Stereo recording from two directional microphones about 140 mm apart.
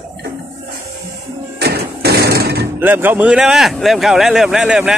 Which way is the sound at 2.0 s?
90° right.